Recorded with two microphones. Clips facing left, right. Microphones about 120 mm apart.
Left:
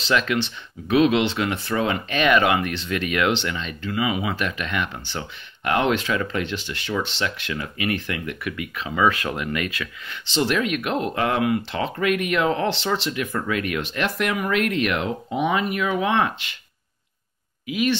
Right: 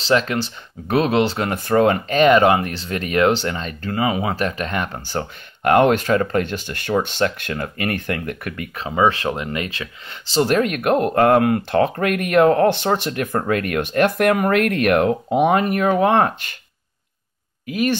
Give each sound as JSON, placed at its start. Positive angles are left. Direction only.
{"t": 0.0, "sound": "speech", "side_deg": -35}
{"t": 17.6, "sound": "speech", "side_deg": -45}